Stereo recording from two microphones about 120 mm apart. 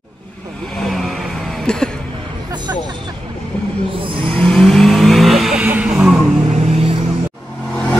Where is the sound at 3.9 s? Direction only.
50° right (ahead or behind).